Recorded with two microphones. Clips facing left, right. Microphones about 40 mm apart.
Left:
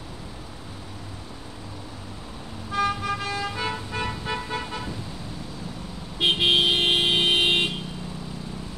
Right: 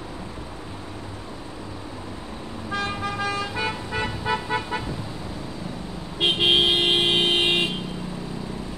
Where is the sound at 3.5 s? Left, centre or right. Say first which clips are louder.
Right 2 dB; centre.